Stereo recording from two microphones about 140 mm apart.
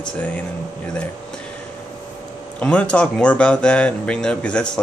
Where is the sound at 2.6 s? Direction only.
10° left (ahead or behind).